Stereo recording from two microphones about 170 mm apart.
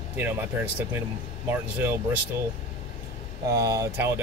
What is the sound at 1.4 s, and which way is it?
Speech, 10° right (ahead or behind).